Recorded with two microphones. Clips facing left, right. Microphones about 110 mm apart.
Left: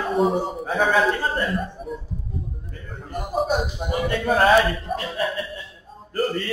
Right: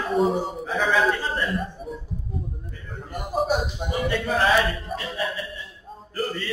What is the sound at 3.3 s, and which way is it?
Music, centre (ahead or behind).